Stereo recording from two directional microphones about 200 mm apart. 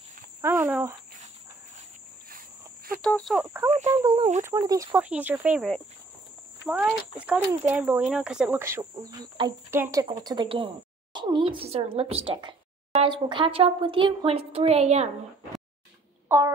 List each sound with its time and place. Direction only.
0.4 s speech: 10° right (ahead or behind)
1.8 s cricket: 45° right (ahead or behind)
3.0 s fowl: 5° left (ahead or behind)
3.4 s speech: 10° right (ahead or behind)
7.2 s speech: 5° right (ahead or behind); by 15.0 s 30° right (ahead or behind)
16.3 s a sound: 15° right (ahead or behind)